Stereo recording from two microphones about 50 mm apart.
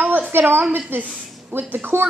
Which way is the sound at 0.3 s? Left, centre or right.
Right.